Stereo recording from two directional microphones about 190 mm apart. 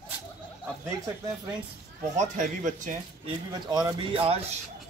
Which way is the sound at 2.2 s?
40° right (ahead or behind).